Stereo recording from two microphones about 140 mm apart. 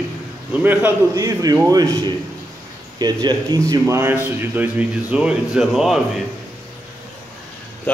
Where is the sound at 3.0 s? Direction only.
30° right (ahead or behind); by 6.0 s centre (ahead or behind).